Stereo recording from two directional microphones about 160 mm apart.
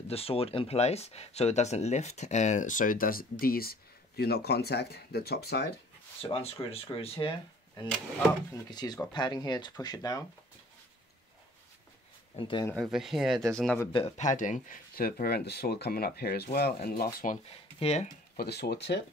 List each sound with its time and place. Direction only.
0.1 s speech: 35° left (ahead or behind); by 3.7 s 70° left (ahead or behind)
4.2 s speech: 85° left
6.2 s speech: 40° left (ahead or behind)
12.4 s speech: 30° left (ahead or behind)
12.7 s speech: centre (ahead or behind)
14.1 s speech: 50° left (ahead or behind)
17.7 s speech: 40° left (ahead or behind)
18.3 s speech: 85° left